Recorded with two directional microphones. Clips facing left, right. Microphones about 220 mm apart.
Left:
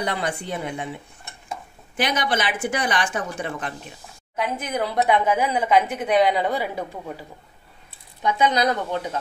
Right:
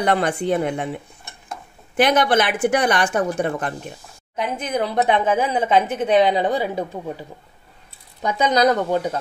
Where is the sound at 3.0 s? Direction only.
45° right (ahead or behind).